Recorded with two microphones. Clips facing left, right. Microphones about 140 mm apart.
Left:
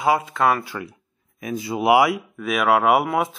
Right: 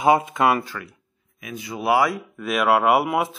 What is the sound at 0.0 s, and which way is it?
Speech, 20° right (ahead or behind).